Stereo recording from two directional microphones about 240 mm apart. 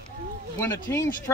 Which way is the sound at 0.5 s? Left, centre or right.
Centre.